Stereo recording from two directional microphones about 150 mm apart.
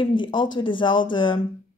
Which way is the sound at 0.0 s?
35° left (ahead or behind).